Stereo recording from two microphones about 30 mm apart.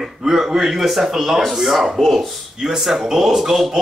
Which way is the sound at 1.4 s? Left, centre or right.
Centre.